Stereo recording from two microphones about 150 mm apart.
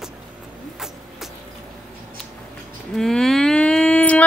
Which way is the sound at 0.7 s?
Centre (ahead or behind).